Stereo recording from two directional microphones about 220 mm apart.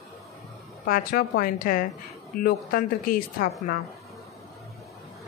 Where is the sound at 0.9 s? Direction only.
40° left (ahead or behind).